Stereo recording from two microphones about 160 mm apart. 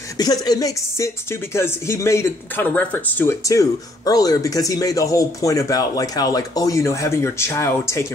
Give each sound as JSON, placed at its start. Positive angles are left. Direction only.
{"t": 0.2, "sound": "speech", "side_deg": 25}